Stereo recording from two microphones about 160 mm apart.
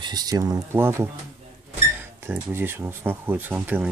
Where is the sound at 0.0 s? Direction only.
25° right (ahead or behind).